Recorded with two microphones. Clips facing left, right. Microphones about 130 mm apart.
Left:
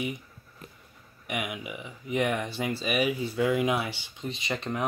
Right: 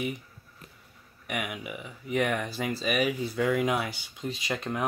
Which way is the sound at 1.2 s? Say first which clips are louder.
Left 1 dB; centre (ahead or behind).